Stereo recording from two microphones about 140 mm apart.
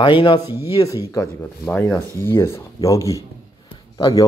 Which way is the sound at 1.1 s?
25° left (ahead or behind).